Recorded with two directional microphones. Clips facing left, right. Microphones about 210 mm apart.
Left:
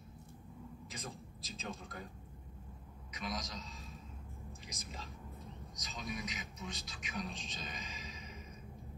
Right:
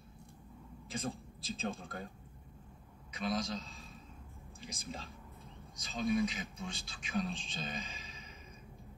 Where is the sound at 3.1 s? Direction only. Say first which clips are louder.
Right 7 dB; 30° right (ahead or behind).